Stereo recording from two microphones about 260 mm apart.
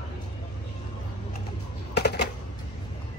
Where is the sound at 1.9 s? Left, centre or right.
Left.